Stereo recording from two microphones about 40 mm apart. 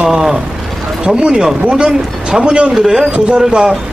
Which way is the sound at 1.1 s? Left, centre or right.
Right.